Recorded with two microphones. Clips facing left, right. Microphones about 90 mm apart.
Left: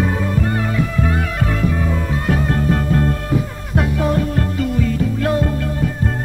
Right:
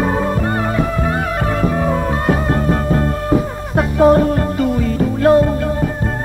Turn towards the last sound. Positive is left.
turn(degrees=-35)  # may be behind; listen again after turning